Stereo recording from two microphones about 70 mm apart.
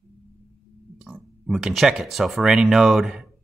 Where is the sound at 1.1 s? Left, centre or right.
Centre.